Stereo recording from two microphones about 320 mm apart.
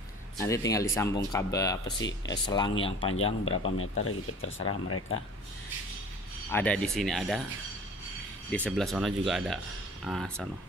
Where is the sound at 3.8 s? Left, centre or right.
Left.